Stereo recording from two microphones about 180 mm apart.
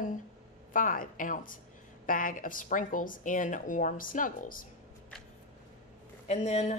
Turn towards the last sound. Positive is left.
turn(degrees=35)  # may be behind; listen again after turning